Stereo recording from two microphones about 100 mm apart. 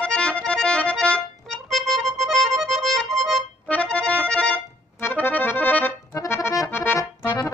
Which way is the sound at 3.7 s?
10° left (ahead or behind).